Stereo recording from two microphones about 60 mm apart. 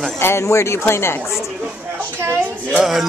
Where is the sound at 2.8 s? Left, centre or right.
Centre.